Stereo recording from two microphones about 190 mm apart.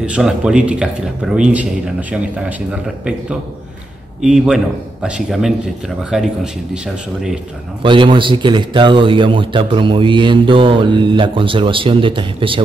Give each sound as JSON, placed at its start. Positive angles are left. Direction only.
{"t": 0.0, "sound": "speech", "side_deg": -5}
{"t": 4.2, "sound": "speech", "side_deg": 0}
{"t": 7.8, "sound": "speech", "side_deg": -25}